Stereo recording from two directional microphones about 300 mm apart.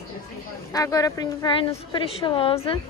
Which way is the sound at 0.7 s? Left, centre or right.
Centre.